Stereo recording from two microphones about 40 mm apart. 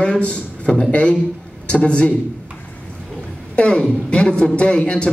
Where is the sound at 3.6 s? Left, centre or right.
Left.